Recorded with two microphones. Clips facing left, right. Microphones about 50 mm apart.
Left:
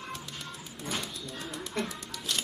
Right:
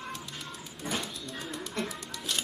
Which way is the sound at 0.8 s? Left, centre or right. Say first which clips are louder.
Right 1 dB; centre.